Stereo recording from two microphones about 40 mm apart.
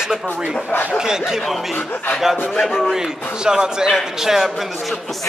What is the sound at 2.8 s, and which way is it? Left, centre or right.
A man's voice, centre.